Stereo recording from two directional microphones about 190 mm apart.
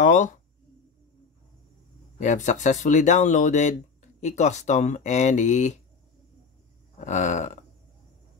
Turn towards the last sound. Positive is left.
turn(degrees=40)  # may be behind; listen again after turning